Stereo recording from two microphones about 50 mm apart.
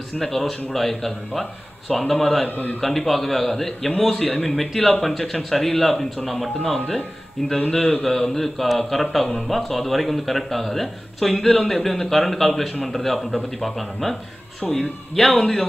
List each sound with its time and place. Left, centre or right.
0.2 s speech: centre
2.4 s a man's voice: left
2.8 s speech: centre
8.0 s speech: centre